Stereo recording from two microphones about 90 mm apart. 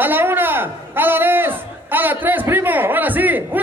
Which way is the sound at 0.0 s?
25° right (ahead or behind).